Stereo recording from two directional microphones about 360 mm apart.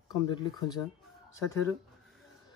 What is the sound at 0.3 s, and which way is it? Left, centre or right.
Speech, centre.